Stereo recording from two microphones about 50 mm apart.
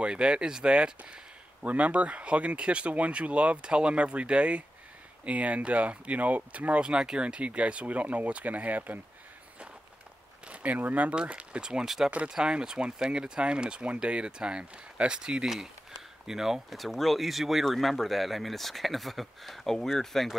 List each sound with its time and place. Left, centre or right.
0.0 s speech: centre
1.6 s speech: right
10.5 s speech: right; by 20.2 s centre